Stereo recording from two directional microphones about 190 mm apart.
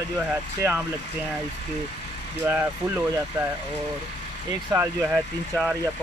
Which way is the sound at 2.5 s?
10° right (ahead or behind).